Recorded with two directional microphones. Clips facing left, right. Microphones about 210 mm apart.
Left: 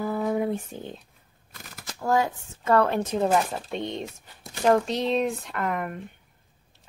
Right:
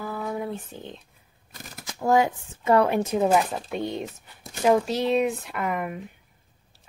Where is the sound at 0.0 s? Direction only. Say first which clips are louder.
Left 5 dB; 20° left (ahead or behind).